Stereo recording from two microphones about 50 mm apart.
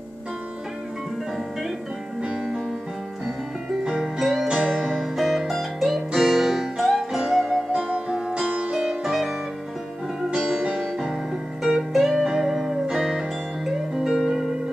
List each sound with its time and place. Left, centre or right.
3.8 s music: centre
4.2 s music: centre
4.5 s music: centre
9.0 s music: centre
10.7 s piano: centre
11.6 s music: centre